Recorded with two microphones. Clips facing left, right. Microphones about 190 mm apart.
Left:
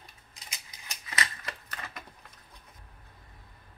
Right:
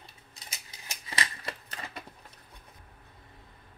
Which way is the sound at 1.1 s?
30° right (ahead or behind).